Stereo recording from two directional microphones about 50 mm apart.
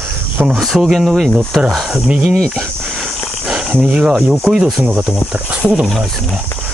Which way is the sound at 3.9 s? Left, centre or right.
Centre.